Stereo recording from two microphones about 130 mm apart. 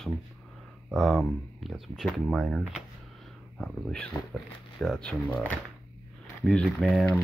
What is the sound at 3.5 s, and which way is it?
Speech, 5° left (ahead or behind).